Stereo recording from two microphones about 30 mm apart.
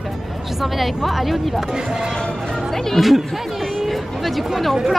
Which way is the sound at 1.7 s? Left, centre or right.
Right.